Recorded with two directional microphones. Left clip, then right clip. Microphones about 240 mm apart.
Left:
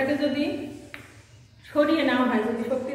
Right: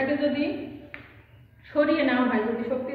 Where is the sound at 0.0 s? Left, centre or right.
Centre.